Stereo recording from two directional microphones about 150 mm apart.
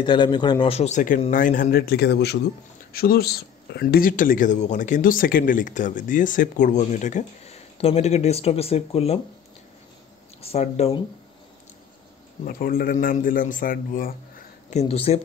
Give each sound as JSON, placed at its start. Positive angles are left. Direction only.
{"t": 0.0, "sound": "a man's voice", "side_deg": 30}
{"t": 0.7, "sound": "a man's voice", "side_deg": 50}
{"t": 10.4, "sound": "speech", "side_deg": 45}
{"t": 12.4, "sound": "a man's voice", "side_deg": 75}
{"t": 14.7, "sound": "speech", "side_deg": 45}